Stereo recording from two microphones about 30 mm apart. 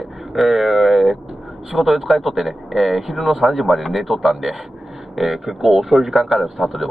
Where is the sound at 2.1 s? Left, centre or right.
Centre.